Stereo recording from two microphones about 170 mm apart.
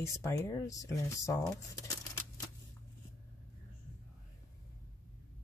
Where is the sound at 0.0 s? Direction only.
15° left (ahead or behind).